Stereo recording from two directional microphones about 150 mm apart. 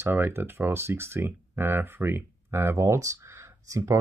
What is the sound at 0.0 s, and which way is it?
Speech, 15° right (ahead or behind).